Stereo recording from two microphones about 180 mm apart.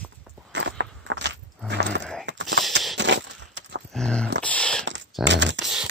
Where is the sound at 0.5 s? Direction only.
80° right.